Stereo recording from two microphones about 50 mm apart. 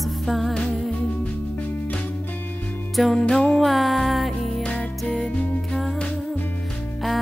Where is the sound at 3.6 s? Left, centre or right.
Centre.